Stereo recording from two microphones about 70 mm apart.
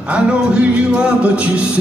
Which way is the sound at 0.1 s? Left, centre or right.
Centre.